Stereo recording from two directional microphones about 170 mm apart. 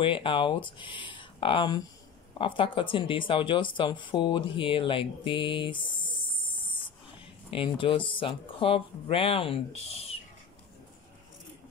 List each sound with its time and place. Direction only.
0.0 s speech: 30° left (ahead or behind)
7.2 s speech: 30° left (ahead or behind)